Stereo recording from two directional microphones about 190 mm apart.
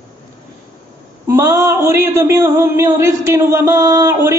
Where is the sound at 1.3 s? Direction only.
15° right (ahead or behind).